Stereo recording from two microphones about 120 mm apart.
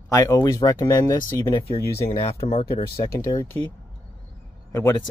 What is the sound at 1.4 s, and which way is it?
Speech, 45° left (ahead or behind).